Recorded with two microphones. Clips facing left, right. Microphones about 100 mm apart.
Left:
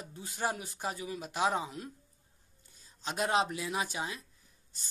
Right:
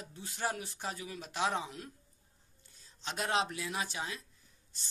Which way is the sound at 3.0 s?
5° left (ahead or behind).